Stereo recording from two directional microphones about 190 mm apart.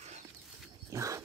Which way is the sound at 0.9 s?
15° right (ahead or behind).